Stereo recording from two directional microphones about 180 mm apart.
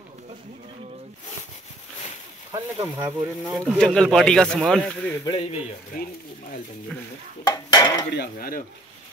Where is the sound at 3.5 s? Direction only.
5° left (ahead or behind).